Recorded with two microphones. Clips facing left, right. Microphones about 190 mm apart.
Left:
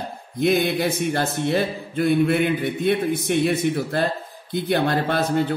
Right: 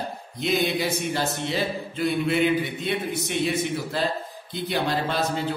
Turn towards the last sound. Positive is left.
turn(degrees=55)  # may be behind; listen again after turning